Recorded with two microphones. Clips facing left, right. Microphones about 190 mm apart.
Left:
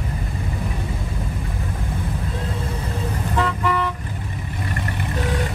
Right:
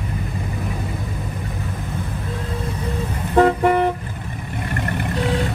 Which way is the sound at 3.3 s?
50° right (ahead or behind).